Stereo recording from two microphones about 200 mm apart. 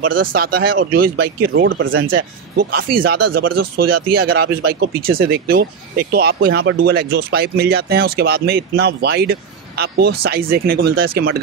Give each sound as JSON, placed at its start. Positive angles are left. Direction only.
{"t": 0.0, "sound": "speech", "side_deg": -45}
{"t": 2.0, "sound": "speech", "side_deg": -45}